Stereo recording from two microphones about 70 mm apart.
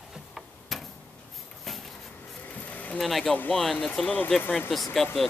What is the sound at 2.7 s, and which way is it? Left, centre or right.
Vehicle, left.